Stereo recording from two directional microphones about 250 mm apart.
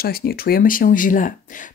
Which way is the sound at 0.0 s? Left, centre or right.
Left.